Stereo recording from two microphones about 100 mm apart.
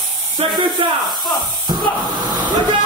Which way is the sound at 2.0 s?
45° right (ahead or behind).